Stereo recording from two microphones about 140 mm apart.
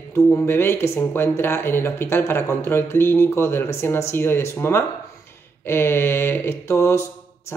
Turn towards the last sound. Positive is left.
turn(degrees=20)  # may be behind; listen again after turning